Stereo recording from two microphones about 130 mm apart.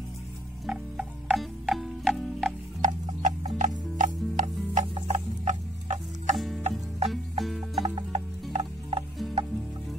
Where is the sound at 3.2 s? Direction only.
70° right (ahead or behind).